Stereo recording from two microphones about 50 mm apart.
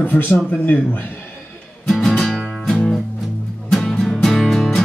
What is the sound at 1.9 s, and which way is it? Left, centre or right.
Music, centre.